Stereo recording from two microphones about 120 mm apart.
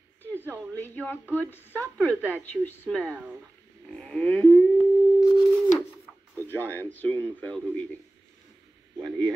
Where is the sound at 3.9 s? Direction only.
5° left (ahead or behind).